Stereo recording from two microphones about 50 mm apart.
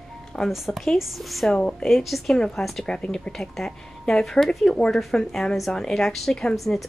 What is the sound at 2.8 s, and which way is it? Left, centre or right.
Speech, centre.